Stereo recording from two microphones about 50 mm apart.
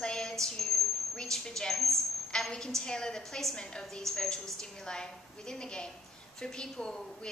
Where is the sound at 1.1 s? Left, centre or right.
Centre.